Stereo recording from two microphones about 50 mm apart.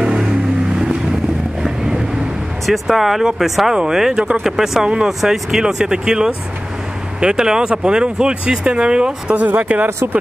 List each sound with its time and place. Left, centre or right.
0.0 s vehicle: centre
2.6 s speech: centre
3.7 s speech: centre
9.3 s speech: right